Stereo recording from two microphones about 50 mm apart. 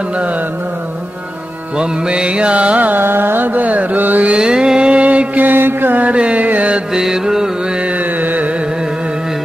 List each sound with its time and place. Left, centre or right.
1.8 s music: centre
3.0 s carnatic music: right
4.4 s mantra: centre; by 6.1 s right
6.1 s carnatic music: right
6.9 s mantra: centre
7.8 s carnatic music: right